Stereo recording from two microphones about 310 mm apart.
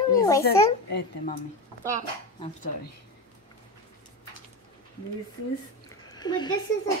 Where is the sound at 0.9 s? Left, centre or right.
Left.